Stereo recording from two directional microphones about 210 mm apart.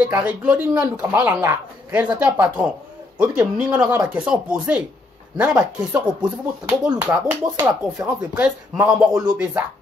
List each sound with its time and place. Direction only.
0.0 s a woman's voice: 5° right (ahead or behind)